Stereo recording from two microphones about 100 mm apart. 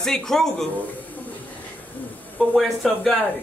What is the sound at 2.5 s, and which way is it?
Speech, centre (ahead or behind).